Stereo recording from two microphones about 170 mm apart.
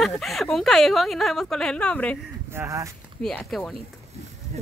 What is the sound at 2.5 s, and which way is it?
Speech, 15° right (ahead or behind).